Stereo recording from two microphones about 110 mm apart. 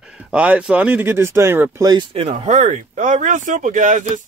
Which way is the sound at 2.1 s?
90° right.